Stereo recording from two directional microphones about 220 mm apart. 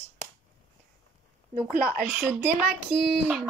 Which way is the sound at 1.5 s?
40° right (ahead or behind).